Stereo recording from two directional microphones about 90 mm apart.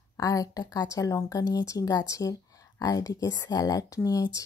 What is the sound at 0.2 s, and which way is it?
Speech, 40° left (ahead or behind).